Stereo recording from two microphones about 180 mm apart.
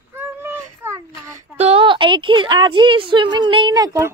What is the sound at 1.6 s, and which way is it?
A woman's voice, 30° right (ahead or behind).